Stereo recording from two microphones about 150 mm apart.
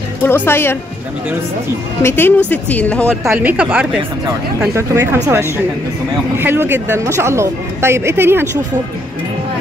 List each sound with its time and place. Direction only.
0.2 s a woman's voice: 15° left (ahead or behind)
2.0 s a woman's voice: 15° left (ahead or behind)
3.3 s speech: 10° right (ahead or behind)
6.3 s speech: 15° right (ahead or behind)